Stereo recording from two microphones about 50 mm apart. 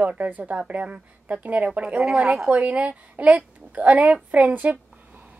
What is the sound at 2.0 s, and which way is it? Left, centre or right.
Speech, centre.